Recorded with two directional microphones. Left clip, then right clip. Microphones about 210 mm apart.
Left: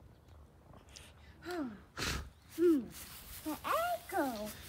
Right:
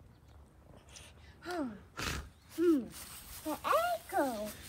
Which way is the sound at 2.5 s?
Centre (ahead or behind).